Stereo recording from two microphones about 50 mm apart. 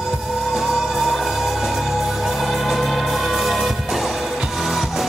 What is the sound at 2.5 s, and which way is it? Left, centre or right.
Music, centre.